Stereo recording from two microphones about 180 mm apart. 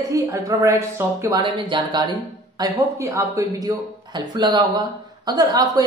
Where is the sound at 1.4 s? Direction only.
25° right (ahead or behind).